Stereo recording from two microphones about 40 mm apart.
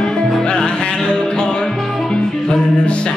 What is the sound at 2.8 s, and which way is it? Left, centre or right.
Music, left.